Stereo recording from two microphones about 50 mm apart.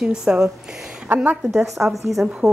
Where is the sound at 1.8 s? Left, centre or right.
Right.